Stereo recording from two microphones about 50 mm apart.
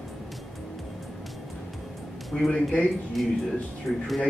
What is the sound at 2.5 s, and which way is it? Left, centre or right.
Speech, left.